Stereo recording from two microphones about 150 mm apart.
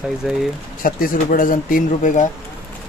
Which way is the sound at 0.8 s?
65° left (ahead or behind).